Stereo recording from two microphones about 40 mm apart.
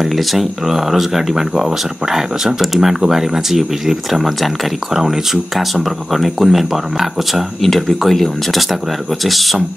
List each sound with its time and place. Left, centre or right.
0.0 s speech: centre
7.6 s speech: centre